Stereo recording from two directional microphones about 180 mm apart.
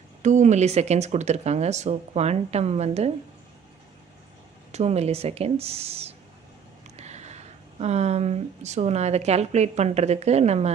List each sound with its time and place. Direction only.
0.2 s speech: 40° right (ahead or behind)
4.7 s speech: 35° right (ahead or behind)